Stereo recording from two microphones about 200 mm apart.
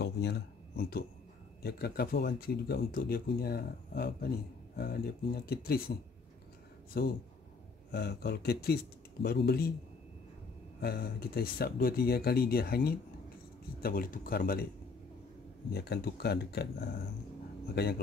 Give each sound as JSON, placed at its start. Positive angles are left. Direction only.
{"t": 0.0, "sound": "a sound", "side_deg": 55}
{"t": 1.6, "sound": "speech", "side_deg": 50}
{"t": 10.8, "sound": "speech", "side_deg": 50}
{"t": 15.7, "sound": "speech", "side_deg": 50}